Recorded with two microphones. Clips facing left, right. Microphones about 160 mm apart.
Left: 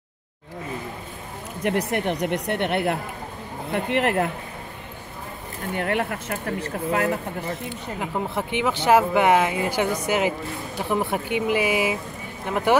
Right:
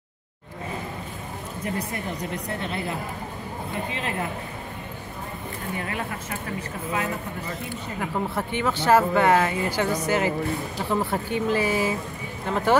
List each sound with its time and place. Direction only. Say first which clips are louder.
1.6 s a woman's voice: left 7 dB; 75° left (ahead or behind)
5.8 s a woman's voice: left 9 dB; 70° left (ahead or behind)
8.0 s speech: even; 15° left (ahead or behind)